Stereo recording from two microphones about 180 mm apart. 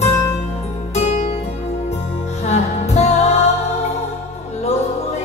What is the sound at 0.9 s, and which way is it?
Music, 40° left (ahead or behind).